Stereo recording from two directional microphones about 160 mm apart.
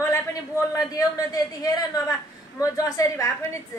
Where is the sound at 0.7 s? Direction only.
20° left (ahead or behind).